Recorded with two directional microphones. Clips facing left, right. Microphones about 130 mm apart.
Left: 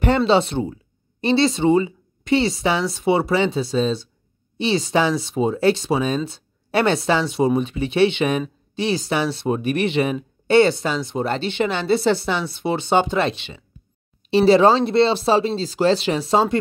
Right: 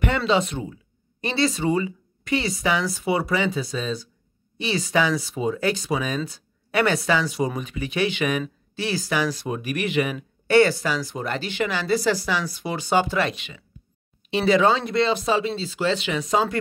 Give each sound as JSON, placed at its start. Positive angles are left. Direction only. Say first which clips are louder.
{"t": 0.0, "sound": "speech", "louder": "left 5 dB", "side_deg": 30}